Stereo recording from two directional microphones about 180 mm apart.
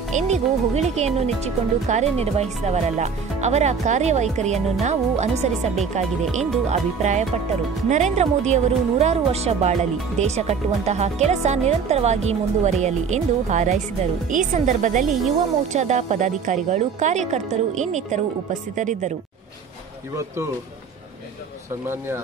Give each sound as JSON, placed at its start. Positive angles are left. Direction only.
{"t": 0.1, "sound": "speech", "side_deg": -40}
{"t": 21.8, "sound": "speech", "side_deg": -15}